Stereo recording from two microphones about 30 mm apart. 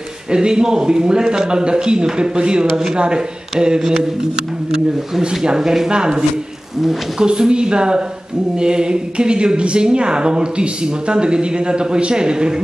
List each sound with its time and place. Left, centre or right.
0.3 s speech: right
5.4 s speech: right
5.9 s speech: right
7.2 s speech: right